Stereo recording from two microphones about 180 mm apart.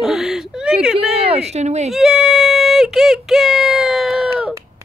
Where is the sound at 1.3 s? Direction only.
35° right (ahead or behind).